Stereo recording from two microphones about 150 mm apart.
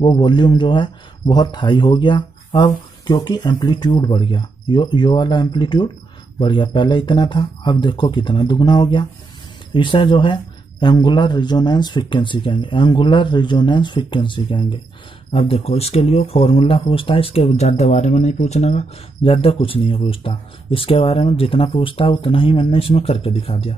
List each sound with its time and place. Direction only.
0.0 s speech: 30° left (ahead or behind)